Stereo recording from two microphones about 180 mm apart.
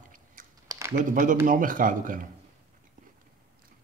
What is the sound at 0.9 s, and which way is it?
Speech, 45° right (ahead or behind).